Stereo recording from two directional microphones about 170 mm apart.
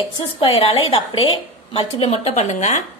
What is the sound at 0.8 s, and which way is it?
A woman's voice, 30° left (ahead or behind).